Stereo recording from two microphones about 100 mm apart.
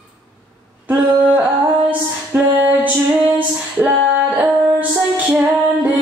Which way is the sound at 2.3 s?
20° right (ahead or behind).